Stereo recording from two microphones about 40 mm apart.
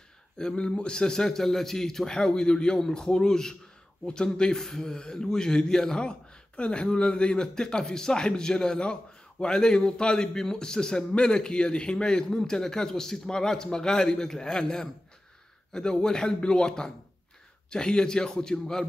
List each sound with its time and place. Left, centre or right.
0.4 s a man's voice: centre